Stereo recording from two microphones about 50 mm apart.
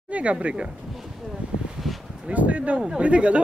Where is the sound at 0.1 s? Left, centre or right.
Right.